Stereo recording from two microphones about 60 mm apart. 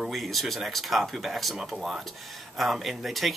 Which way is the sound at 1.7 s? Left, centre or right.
Centre.